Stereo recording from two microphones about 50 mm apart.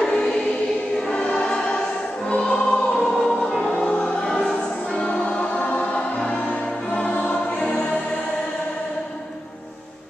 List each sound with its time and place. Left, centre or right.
0.0 s choir: centre
3.7 s music: left